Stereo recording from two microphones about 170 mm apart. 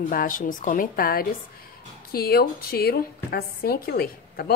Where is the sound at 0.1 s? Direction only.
55° left (ahead or behind).